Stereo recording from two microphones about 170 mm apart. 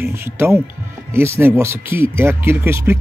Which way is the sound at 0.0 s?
15° right (ahead or behind).